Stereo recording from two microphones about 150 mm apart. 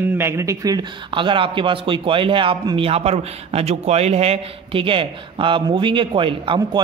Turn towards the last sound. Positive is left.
turn(degrees=-35)  # may be behind; listen again after turning